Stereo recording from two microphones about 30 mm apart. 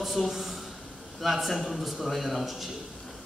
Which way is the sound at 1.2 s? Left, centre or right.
Centre.